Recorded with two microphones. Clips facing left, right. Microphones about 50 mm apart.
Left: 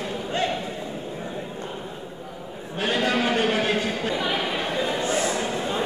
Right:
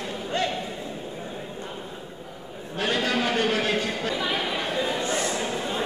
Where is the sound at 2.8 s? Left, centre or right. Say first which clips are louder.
Left 2 dB; centre.